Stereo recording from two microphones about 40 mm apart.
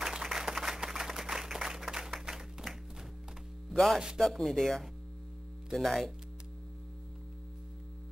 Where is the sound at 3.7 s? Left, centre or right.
Centre.